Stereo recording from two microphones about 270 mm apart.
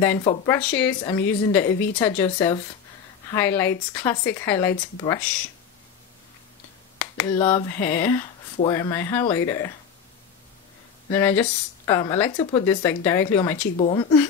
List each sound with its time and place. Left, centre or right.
0.0 s speech: centre
7.0 s finger snapping: centre
7.4 s speech: centre
11.1 s speech: centre